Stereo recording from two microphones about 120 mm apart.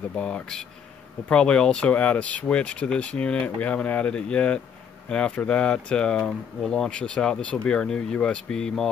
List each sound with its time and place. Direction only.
0.1 s speech: 10° left (ahead or behind)